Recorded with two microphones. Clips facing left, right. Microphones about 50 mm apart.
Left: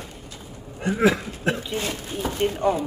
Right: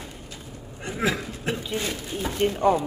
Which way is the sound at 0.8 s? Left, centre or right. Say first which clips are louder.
Left 6 dB; centre.